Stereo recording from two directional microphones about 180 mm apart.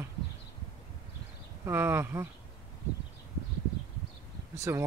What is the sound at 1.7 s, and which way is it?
Speech, 15° right (ahead or behind).